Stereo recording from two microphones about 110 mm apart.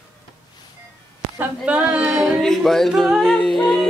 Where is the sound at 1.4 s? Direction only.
10° right (ahead or behind).